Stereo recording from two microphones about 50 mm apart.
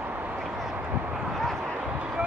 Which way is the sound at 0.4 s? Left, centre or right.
Centre.